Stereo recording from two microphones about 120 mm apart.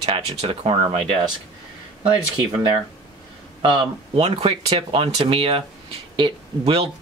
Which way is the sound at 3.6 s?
50° right (ahead or behind).